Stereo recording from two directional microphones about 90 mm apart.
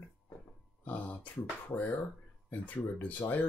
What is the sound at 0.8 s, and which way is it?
Speech, 20° left (ahead or behind).